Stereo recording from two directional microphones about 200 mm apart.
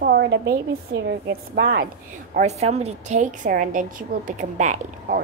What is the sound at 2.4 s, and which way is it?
A woman's voice, 35° right (ahead or behind).